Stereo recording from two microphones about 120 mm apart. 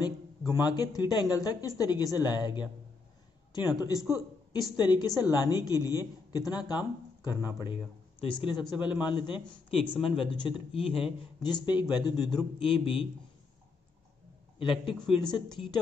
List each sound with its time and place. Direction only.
0.5 s a man's voice: 35° left (ahead or behind)
7.7 s speech: 45° left (ahead or behind)
12.5 s speech: 45° left (ahead or behind)
14.6 s speech: 45° left (ahead or behind)